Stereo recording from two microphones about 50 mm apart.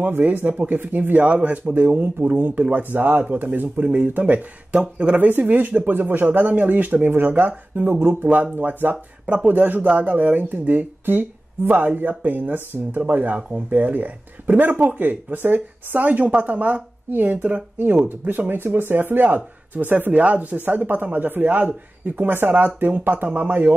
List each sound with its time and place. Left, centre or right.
0.2 s speech: right
5.1 s speech: right
9.2 s speech: right
18.5 s speech: right
19.2 s speech: right